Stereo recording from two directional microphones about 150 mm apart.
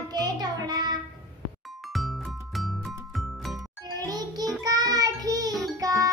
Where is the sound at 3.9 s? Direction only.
25° right (ahead or behind).